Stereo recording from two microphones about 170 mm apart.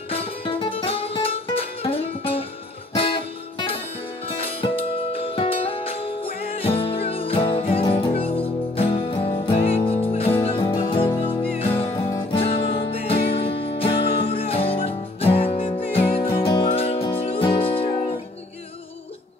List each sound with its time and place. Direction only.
0.1 s music: 35° left (ahead or behind)
12.5 s music: 90° left
12.9 s music: 35° left (ahead or behind)